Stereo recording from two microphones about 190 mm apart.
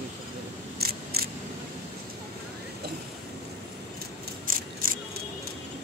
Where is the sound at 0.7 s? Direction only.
55° right (ahead or behind).